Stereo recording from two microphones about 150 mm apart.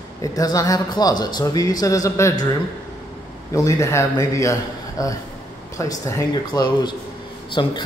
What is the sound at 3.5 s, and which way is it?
Speech, 20° left (ahead or behind).